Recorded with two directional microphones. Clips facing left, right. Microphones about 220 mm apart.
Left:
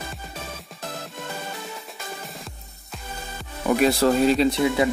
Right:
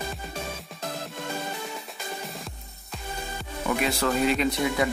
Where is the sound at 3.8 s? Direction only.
35° left (ahead or behind).